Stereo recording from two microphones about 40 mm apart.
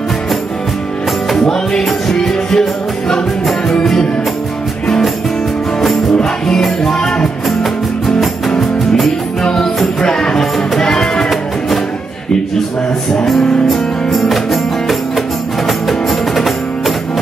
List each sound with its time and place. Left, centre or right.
1.3 s music: centre
3.8 s music: centre
6.4 s music: centre
8.5 s music: centre
9.4 s music: centre
13.7 s music: centre